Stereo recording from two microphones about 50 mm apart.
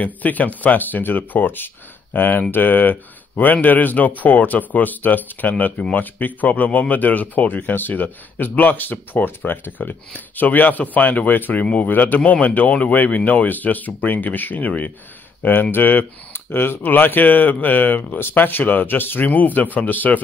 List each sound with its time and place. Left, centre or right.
0.0 s speech: left